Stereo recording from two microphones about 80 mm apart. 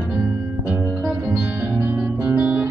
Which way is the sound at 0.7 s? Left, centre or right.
Right.